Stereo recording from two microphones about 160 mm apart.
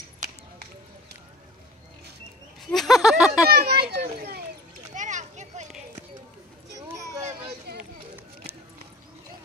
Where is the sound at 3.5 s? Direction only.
75° right (ahead or behind).